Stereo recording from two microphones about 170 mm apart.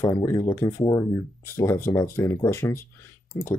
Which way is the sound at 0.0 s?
20° left (ahead or behind).